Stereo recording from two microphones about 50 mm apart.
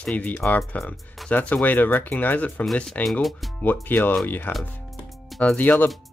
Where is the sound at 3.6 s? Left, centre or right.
Left.